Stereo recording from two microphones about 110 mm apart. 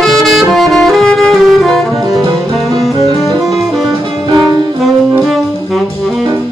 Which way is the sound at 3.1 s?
35° right (ahead or behind).